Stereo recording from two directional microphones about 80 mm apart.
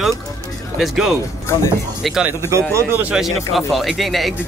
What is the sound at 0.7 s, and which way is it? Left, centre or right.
Speech, centre.